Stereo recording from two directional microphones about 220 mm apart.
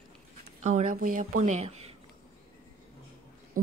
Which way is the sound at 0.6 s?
35° right (ahead or behind).